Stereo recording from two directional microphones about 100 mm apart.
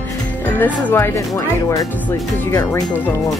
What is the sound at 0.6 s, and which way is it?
Speech, 15° left (ahead or behind).